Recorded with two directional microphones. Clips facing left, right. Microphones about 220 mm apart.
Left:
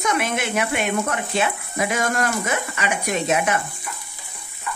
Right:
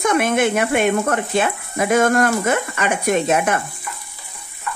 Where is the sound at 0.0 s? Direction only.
50° right (ahead or behind).